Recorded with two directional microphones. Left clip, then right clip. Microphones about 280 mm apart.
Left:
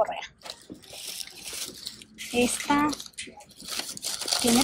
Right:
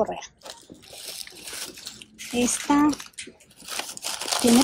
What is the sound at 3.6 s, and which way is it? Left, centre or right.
Crumpling, right.